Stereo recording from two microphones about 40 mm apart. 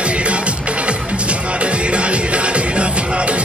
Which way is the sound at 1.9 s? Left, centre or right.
Right.